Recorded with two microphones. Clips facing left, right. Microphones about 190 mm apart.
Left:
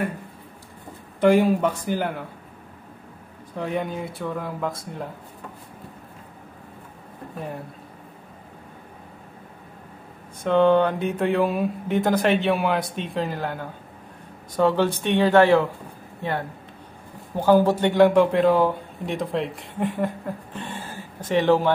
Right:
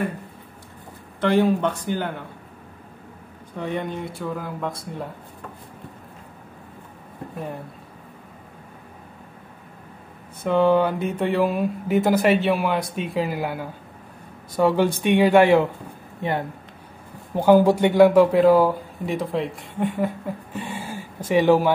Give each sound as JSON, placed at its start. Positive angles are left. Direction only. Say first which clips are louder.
{"t": 1.2, "sound": "speech", "louder": "left 2 dB", "side_deg": 10}
{"t": 3.5, "sound": "speech", "louder": "left 1 dB", "side_deg": 5}
{"t": 10.4, "sound": "a man's voice", "louder": "left 1 dB", "side_deg": -5}